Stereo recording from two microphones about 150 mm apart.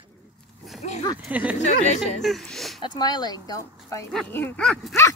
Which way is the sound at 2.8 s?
30° left (ahead or behind).